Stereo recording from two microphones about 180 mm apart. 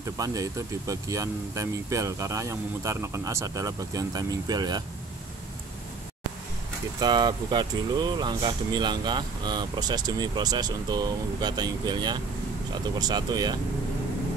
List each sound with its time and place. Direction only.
0.2 s speech: 20° right (ahead or behind)
7.0 s speech: 25° right (ahead or behind)